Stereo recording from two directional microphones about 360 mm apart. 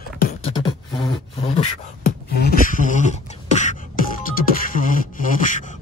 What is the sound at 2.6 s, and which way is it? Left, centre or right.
Beatboxing, left.